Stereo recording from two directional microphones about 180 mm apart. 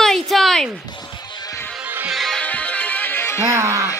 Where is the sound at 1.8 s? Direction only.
10° right (ahead or behind).